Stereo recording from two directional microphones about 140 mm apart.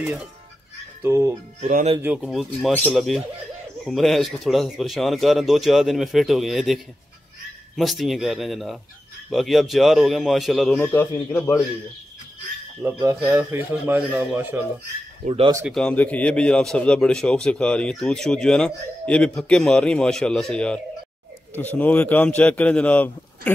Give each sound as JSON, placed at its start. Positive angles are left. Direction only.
{"t": 0.0, "sound": "a man's voice", "side_deg": -10}
{"t": 1.0, "sound": "speech", "side_deg": -20}
{"t": 2.2, "sound": "a man's voice", "side_deg": 0}
{"t": 10.8, "sound": "a man's voice", "side_deg": 15}
{"t": 12.8, "sound": "a man's voice", "side_deg": -15}
{"t": 15.2, "sound": "speech", "side_deg": -45}
{"t": 15.6, "sound": "a man's voice", "side_deg": 5}